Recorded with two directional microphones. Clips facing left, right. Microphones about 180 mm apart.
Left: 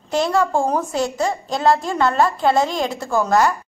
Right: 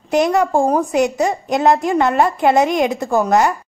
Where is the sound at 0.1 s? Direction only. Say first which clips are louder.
Right 4 dB; 15° right (ahead or behind).